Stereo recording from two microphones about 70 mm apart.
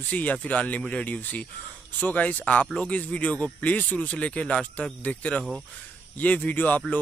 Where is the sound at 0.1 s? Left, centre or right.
Left.